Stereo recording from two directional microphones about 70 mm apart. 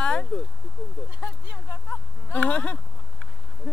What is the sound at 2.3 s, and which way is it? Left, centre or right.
Speech, centre.